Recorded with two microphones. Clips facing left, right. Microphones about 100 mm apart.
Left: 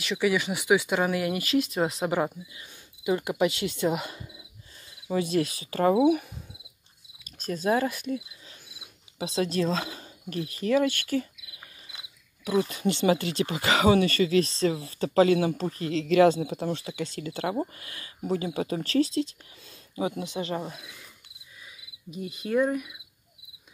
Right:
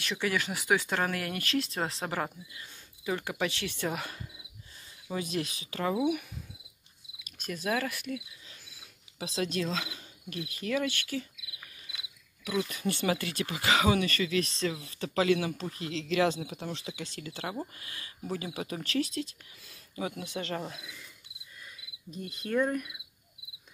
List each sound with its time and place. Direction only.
0.0 s speech: 5° left (ahead or behind)
5.1 s speech: 40° left (ahead or behind)
7.2 s speech: 35° left (ahead or behind); by 20.9 s 15° left (ahead or behind)
21.6 s cricket: 5° left (ahead or behind)